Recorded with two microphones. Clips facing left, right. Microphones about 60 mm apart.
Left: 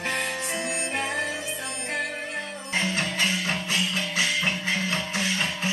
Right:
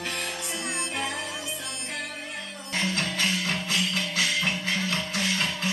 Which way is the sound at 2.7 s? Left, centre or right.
Left.